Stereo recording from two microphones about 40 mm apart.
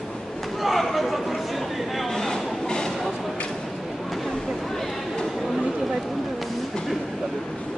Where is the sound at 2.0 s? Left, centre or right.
Centre.